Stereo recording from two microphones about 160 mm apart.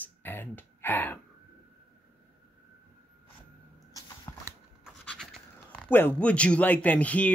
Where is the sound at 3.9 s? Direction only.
25° left (ahead or behind).